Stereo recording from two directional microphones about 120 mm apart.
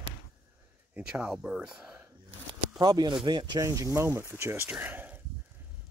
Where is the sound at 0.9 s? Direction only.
10° right (ahead or behind).